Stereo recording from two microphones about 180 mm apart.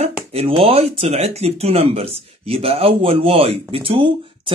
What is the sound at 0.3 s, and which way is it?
Speech, 30° right (ahead or behind).